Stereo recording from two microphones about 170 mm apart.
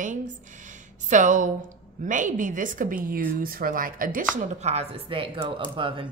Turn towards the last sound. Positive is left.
turn(degrees=-30)  # may be behind; listen again after turning